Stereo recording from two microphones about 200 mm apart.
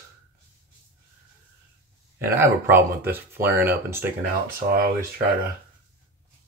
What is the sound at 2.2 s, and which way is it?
Speech, 10° right (ahead or behind).